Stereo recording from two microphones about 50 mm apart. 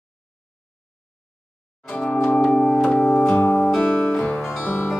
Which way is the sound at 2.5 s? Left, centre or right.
Centre.